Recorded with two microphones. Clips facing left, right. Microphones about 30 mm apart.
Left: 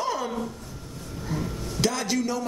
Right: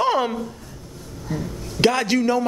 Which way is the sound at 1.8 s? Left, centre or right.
Right.